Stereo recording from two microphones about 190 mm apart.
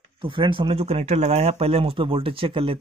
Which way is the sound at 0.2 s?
25° right (ahead or behind).